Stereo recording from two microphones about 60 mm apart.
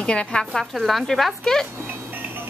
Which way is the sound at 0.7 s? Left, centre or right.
Centre.